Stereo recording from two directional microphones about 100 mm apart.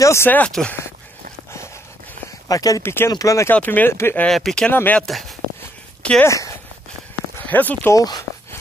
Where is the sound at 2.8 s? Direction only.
25° left (ahead or behind).